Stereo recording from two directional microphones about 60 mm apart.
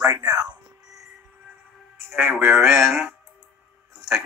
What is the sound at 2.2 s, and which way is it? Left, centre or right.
Speech, right.